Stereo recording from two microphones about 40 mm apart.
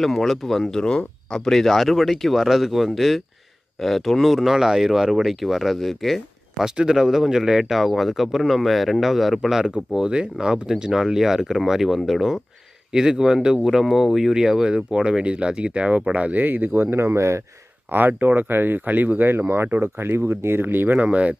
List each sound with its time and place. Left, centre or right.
0.0 s speech: centre
2.3 s speech: centre
6.6 s speech: centre
7.9 s speech: centre
9.9 s speech: centre
14.3 s speech: centre; by 16.4 s right
16.4 s speech: right
16.9 s speech: right
17.9 s speech: right
21.0 s speech: right